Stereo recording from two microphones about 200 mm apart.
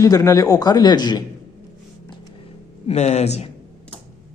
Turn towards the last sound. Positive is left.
turn(degrees=35)  # may be behind; listen again after turning